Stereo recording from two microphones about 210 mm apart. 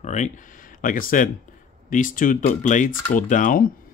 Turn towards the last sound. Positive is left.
turn(degrees=40)  # may be behind; listen again after turning